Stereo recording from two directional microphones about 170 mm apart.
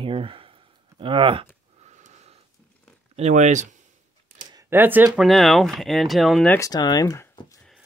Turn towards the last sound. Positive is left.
turn(degrees=15)  # may be behind; listen again after turning